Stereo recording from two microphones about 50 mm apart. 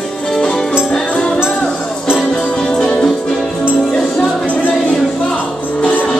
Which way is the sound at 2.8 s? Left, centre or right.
Centre.